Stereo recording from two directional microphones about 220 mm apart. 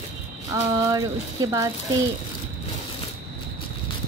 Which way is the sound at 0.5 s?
15° right (ahead or behind).